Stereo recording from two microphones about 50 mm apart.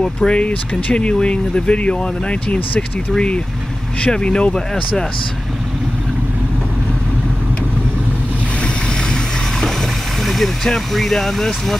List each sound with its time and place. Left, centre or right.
0.0 s speech: centre
4.0 s speech: centre
10.2 s speech: centre